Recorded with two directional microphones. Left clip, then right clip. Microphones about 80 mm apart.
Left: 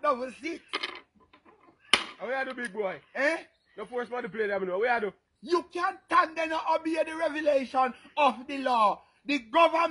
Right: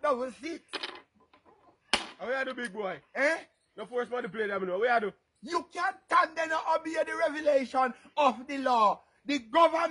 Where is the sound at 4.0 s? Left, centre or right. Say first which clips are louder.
Even; right.